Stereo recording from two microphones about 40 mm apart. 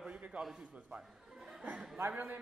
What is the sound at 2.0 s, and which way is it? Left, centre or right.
Speech, right.